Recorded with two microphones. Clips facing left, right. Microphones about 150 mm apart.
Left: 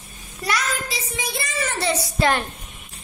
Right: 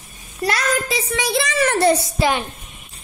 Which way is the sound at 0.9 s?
75° right (ahead or behind).